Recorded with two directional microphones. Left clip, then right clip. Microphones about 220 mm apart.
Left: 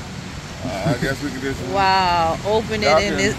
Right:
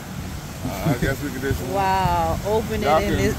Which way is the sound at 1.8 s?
Centre (ahead or behind).